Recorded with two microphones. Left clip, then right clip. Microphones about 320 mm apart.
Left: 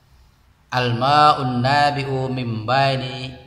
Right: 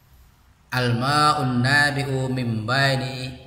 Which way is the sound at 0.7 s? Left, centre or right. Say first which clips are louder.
Left 5 dB; centre.